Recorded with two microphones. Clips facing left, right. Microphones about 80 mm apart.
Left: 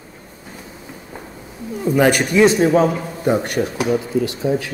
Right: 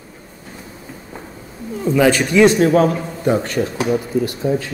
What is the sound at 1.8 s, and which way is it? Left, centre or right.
A man's voice, centre.